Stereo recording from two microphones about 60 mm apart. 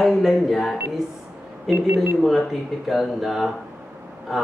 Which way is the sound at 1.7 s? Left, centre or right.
Right.